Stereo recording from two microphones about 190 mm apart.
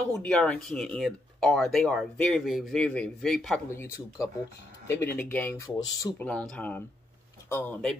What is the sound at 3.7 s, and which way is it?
Speech, 15° left (ahead or behind).